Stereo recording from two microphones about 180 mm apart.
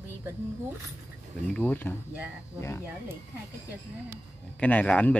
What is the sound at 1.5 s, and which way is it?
Speech, 10° left (ahead or behind).